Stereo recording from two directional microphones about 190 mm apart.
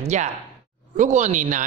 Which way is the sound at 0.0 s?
35° right (ahead or behind).